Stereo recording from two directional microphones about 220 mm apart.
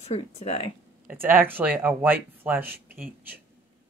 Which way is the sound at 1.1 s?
10° right (ahead or behind).